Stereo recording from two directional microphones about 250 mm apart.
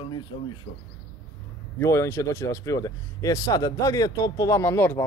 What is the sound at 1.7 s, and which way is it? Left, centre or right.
Speech, centre.